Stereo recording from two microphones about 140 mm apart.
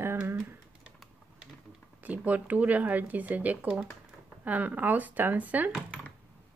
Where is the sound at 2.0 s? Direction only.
10° right (ahead or behind).